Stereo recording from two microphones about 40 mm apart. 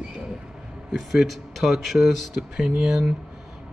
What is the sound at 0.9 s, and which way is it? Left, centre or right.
Speech, centre.